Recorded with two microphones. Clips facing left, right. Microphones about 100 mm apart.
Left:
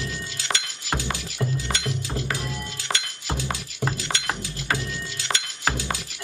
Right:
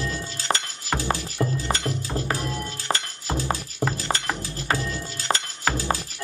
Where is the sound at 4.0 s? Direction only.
40° right (ahead or behind).